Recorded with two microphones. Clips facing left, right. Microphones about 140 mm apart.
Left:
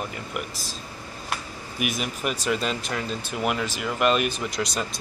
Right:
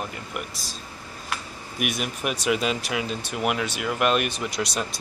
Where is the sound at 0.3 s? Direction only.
Centre (ahead or behind).